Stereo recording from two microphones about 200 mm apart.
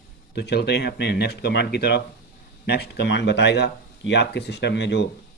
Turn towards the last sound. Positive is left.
turn(degrees=60)  # may be behind; listen again after turning